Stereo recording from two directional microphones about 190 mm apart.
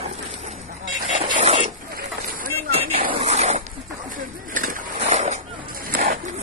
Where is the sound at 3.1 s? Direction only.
35° right (ahead or behind).